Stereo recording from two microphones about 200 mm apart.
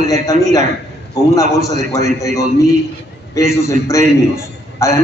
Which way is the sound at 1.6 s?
15° left (ahead or behind).